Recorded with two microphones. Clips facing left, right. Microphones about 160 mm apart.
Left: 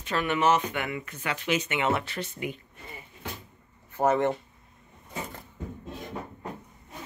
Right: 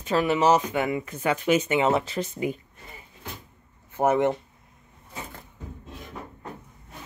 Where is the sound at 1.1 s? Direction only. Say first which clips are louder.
Right 7 dB; 45° right (ahead or behind).